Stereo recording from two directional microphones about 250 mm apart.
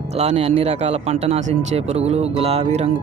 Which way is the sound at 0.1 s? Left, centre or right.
Right.